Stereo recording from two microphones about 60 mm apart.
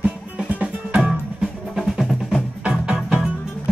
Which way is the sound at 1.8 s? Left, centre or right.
Centre.